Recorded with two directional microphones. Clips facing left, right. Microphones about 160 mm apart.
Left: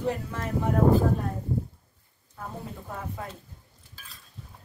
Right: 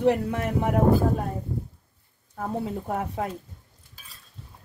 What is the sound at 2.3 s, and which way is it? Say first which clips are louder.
Speech: right 9 dB; 65° right (ahead or behind).